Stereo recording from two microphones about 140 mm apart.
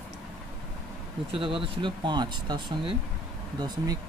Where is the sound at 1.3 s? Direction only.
40° right (ahead or behind).